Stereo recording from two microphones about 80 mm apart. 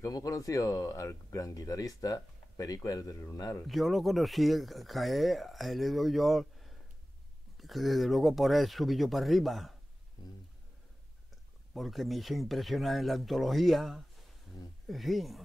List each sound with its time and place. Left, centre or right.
0.0 s speech: left
3.6 s speech: centre
11.7 s speech: centre